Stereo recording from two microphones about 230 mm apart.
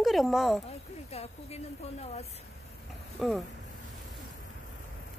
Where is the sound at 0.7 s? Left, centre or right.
Left.